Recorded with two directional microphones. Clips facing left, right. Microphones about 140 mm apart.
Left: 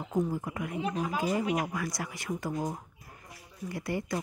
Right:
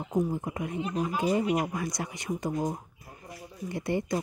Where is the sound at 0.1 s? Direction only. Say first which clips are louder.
Right 2 dB; 20° right (ahead or behind).